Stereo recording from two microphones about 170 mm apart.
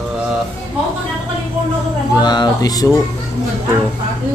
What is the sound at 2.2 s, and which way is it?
Speech, 25° left (ahead or behind).